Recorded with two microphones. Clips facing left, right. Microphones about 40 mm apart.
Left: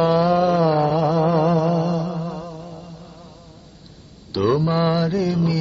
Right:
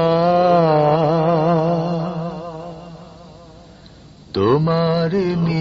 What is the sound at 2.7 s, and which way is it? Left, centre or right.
Music, right.